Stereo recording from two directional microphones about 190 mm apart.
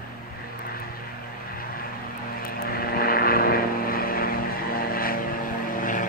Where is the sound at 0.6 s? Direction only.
50° left (ahead or behind).